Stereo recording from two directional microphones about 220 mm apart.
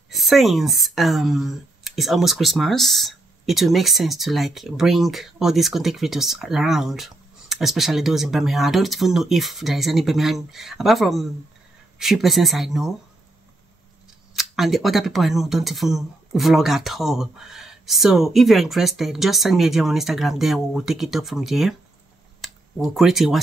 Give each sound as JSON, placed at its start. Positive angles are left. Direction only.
{"t": 0.1, "sound": "speech", "side_deg": 0}
{"t": 14.3, "sound": "speech", "side_deg": 0}